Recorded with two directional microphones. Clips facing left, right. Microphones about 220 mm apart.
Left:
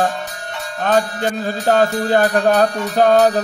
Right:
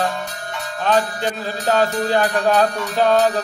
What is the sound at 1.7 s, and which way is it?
Music, 50° left (ahead or behind).